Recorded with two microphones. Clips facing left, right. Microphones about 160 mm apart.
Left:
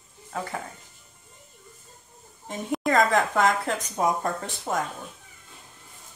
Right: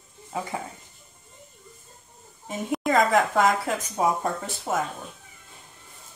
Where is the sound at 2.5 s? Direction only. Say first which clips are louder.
Even; 5° right (ahead or behind).